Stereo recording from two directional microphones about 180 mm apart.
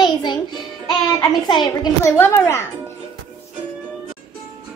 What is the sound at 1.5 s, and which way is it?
Speech, 25° left (ahead or behind).